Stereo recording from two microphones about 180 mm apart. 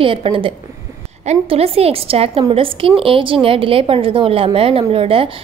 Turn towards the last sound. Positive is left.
turn(degrees=-30)  # may be behind; listen again after turning